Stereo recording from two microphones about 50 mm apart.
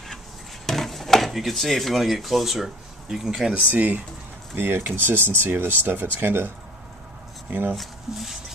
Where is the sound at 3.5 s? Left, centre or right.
Right.